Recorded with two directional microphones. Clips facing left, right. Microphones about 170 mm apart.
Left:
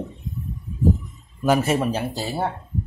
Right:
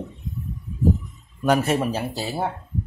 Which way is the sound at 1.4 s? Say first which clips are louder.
Left 1 dB; centre (ahead or behind).